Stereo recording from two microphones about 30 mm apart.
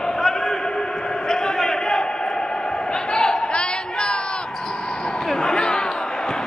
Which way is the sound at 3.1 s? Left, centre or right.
Left.